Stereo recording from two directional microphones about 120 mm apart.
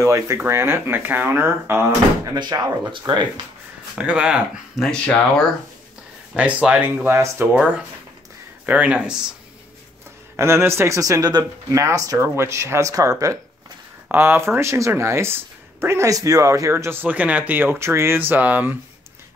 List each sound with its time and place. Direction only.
0.0 s speech: 25° right (ahead or behind)
2.2 s speech: 35° right (ahead or behind)
3.9 s speech: 10° right (ahead or behind)
4.9 s speech: 10° left (ahead or behind)
6.3 s speech: 10° right (ahead or behind)
7.5 s speech: 10° right (ahead or behind)
10.3 s speech: 20° right (ahead or behind)
14.1 s speech: 20° right (ahead or behind)